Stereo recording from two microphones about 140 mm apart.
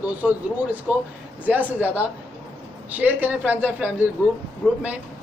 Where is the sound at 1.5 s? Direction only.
10° right (ahead or behind).